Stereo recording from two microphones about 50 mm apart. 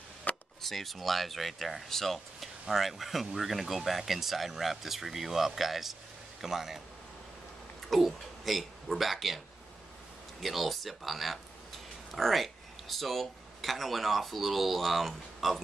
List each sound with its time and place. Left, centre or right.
0.3 s a sound: left
0.6 s a man's voice: centre
7.9 s speech: centre
10.4 s speech: centre